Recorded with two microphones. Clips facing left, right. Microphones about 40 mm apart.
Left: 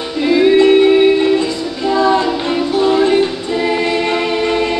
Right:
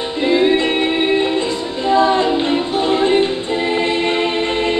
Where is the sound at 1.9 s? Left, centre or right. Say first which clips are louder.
Left 1 dB; right.